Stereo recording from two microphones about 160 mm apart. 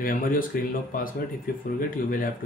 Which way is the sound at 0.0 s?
60° left (ahead or behind).